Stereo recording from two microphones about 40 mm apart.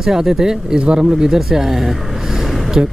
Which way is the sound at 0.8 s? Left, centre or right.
Right.